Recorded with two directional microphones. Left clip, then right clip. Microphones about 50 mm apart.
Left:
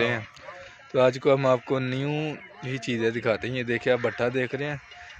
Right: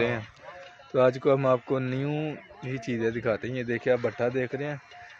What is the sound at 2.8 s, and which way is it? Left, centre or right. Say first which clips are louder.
A man's voice: left 3 dB; left.